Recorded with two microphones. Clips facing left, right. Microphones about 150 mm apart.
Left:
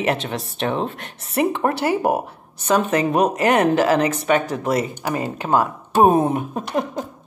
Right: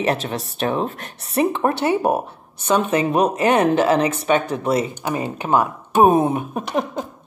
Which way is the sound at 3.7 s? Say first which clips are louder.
Even; 30° right (ahead or behind).